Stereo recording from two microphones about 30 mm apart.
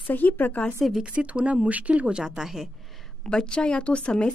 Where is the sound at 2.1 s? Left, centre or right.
Right.